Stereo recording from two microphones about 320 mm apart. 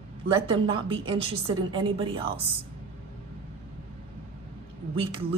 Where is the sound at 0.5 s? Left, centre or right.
Centre.